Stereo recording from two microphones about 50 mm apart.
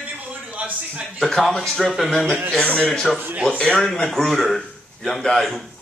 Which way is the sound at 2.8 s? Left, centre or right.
Centre.